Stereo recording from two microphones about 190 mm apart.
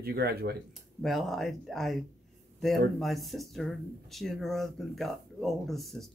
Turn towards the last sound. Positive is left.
turn(degrees=0)  # may be behind; listen again after turning